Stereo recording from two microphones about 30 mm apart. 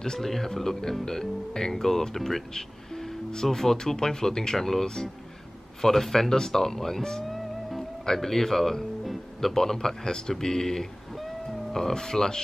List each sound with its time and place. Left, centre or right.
0.2 s speech: centre
7.2 s music: centre
8.0 s speech: centre